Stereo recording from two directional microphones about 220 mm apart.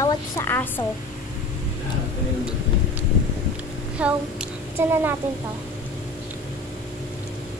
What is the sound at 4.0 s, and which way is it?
A woman's voice, 5° right (ahead or behind).